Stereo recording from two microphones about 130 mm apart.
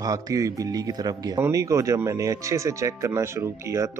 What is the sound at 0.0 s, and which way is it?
Speech, 25° right (ahead or behind).